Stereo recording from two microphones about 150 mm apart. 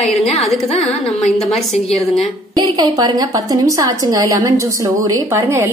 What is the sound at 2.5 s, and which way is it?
A woman's voice, 30° right (ahead or behind).